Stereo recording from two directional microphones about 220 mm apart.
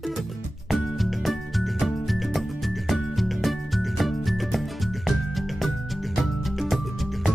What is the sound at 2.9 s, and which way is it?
Music, centre (ahead or behind).